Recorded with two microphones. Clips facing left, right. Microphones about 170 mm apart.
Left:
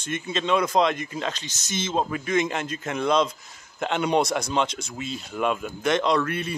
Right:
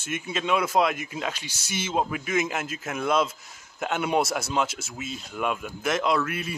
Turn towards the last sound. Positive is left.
turn(degrees=-5)  # may be behind; listen again after turning